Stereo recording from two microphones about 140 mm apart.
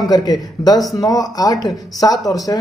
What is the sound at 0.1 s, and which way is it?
Speech, 30° left (ahead or behind).